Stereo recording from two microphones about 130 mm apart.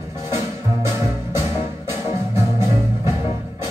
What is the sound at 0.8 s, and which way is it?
Music, 20° right (ahead or behind).